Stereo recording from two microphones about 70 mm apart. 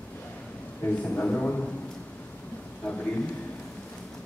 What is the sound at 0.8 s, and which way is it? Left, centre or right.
Speech, left.